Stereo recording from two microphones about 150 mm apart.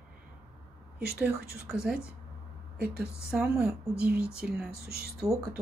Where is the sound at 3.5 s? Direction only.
20° right (ahead or behind).